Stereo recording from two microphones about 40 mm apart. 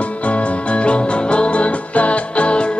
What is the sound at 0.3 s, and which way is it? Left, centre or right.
Music, left.